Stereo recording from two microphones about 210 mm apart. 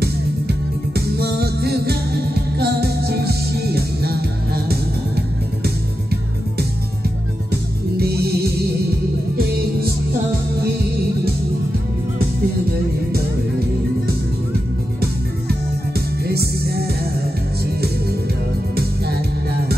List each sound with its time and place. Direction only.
0.9 s music: 50° right (ahead or behind)
8.0 s music: 50° right (ahead or behind)
16.3 s music: 50° right (ahead or behind)